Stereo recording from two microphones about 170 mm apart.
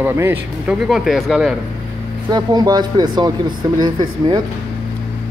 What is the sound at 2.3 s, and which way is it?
Speech, 25° right (ahead or behind).